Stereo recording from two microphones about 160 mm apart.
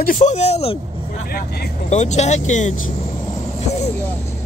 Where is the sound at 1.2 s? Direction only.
75° left (ahead or behind).